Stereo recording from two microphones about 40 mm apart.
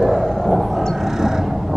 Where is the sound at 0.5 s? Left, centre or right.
Centre.